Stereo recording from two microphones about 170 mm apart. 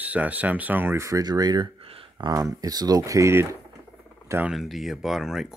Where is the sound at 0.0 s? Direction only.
10° right (ahead or behind).